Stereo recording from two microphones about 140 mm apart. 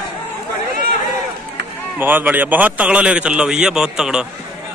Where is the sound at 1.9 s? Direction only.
15° right (ahead or behind).